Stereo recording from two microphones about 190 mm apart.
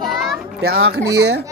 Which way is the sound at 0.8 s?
60° right (ahead or behind).